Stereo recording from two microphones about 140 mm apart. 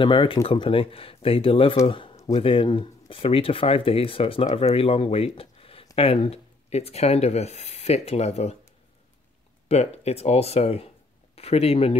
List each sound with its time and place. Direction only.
0.0 s speech: 35° left (ahead or behind)
9.7 s speech: 50° left (ahead or behind)